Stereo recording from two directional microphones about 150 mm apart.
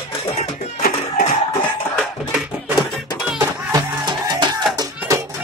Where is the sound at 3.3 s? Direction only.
30° right (ahead or behind).